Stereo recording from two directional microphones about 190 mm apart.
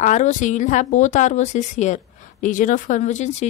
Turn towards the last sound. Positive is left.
turn(degrees=40)  # may be behind; listen again after turning